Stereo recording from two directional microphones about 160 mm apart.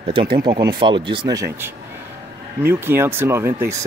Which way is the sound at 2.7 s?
15° right (ahead or behind).